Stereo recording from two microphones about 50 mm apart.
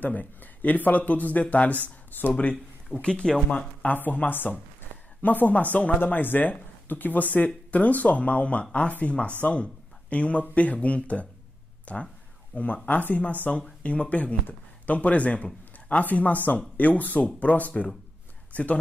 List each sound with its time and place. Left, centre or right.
0.0 s speech: left
3.0 s speech: centre
3.5 s speech: left